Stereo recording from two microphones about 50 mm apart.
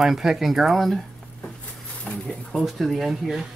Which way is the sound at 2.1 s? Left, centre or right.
Left.